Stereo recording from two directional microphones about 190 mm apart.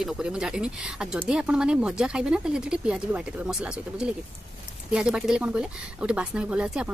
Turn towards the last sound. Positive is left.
turn(degrees=-5)  # may be behind; listen again after turning